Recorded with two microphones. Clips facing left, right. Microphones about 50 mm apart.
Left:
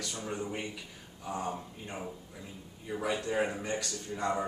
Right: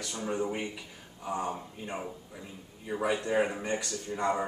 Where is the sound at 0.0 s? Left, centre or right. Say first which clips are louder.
Right 4 dB; centre.